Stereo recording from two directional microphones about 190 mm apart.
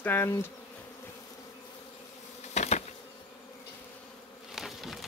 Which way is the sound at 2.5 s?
35° left (ahead or behind).